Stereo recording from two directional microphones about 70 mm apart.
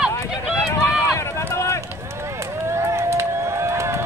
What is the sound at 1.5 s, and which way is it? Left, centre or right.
Run, left.